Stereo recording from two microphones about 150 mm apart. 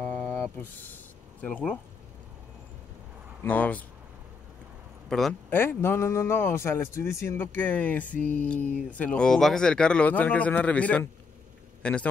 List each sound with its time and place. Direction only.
0.0 s a sound: 10° left (ahead or behind)
1.4 s a man's voice: 10° left (ahead or behind)
3.4 s a man's voice: 10° left (ahead or behind)
5.5 s a man's voice: 15° left (ahead or behind)